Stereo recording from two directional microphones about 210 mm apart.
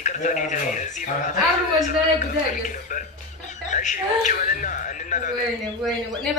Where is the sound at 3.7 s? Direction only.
35° left (ahead or behind).